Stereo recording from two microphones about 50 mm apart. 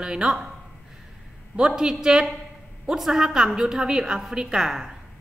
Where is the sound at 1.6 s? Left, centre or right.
Centre.